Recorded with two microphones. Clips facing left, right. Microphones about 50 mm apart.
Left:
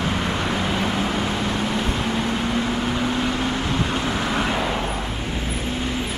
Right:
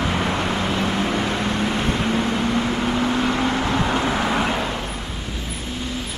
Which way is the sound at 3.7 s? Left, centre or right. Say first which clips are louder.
Right 3 dB; right.